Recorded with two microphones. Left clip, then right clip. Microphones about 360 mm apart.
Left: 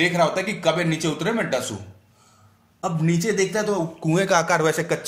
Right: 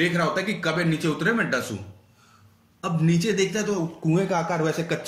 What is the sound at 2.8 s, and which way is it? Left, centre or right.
Speech, centre.